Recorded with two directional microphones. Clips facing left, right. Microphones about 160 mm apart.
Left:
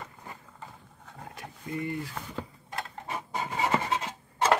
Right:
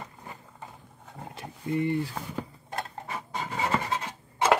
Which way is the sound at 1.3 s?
25° right (ahead or behind).